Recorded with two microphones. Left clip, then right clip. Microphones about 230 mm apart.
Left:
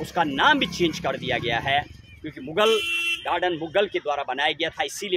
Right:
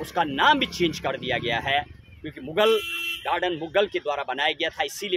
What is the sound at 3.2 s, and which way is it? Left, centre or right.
Speech, centre.